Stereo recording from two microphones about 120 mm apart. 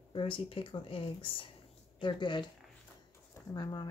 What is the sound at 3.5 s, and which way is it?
Speech, 35° left (ahead or behind).